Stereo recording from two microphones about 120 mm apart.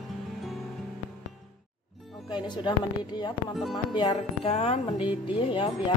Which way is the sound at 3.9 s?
40° left (ahead or behind).